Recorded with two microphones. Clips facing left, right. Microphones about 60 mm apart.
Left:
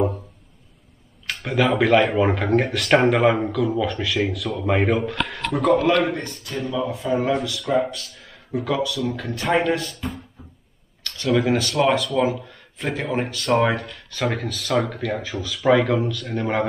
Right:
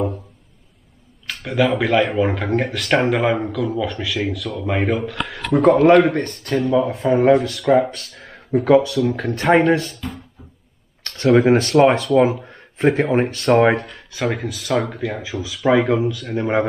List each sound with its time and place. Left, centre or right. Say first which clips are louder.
1.2 s speech: right 2 dB; centre
5.6 s speech: right 6 dB; right
6.0 s speech: right 6 dB; right
6.7 s speech: right 5 dB; right
8.1 s a sound: right 5 dB; right
8.5 s speech: right 9 dB; right
11.3 s speech: right 6 dB; right
14.1 s speech: right 2 dB; centre
15.7 s speech: right 2 dB; centre